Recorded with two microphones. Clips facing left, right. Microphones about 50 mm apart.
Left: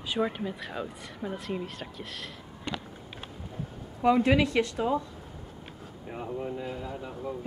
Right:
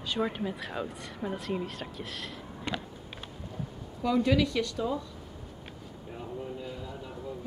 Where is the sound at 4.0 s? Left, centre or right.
Left.